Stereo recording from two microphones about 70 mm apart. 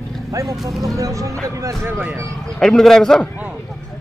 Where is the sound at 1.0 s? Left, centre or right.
Right.